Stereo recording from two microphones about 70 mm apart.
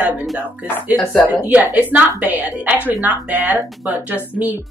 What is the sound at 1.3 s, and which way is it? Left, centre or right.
A woman's voice, right.